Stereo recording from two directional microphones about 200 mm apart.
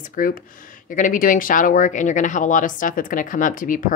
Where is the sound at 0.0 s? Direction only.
45° left (ahead or behind).